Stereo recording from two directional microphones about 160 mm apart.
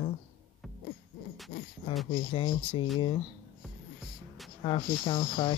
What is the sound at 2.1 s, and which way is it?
Speech, 30° left (ahead or behind).